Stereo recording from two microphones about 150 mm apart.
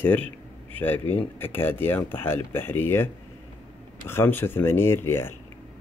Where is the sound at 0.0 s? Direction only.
10° left (ahead or behind).